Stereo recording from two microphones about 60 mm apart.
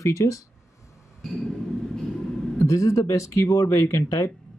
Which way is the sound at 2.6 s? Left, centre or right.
Left.